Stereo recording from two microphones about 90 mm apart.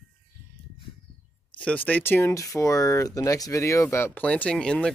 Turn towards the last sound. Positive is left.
turn(degrees=10)  # may be behind; listen again after turning